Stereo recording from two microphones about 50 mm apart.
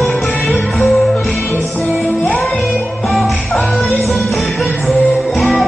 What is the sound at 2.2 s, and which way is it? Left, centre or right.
Music, left.